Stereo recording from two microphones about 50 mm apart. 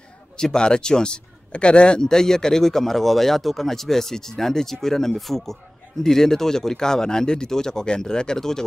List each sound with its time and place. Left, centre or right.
0.4 s speech: centre